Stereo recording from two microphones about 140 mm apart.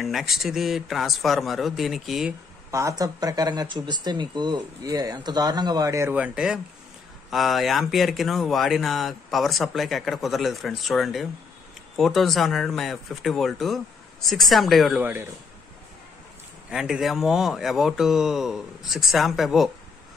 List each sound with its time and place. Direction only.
0.0 s speech: centre (ahead or behind)
2.7 s speech: 25° right (ahead or behind)
6.1 s speech: 10° right (ahead or behind)
16.7 s speech: 5° right (ahead or behind)